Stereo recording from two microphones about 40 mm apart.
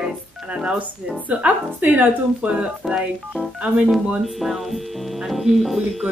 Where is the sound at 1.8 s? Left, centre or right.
Right.